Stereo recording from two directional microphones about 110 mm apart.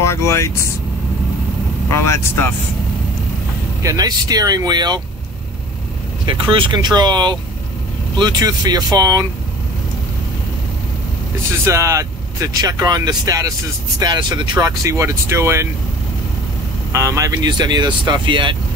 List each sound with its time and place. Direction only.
0.0 s speech: 25° left (ahead or behind)
1.9 s speech: 25° left (ahead or behind)
3.8 s speech: 35° right (ahead or behind)
6.5 s speech: 45° right (ahead or behind)
11.6 s speech: 25° right (ahead or behind)
16.9 s speech: 30° right (ahead or behind); by 18.6 s 45° right (ahead or behind)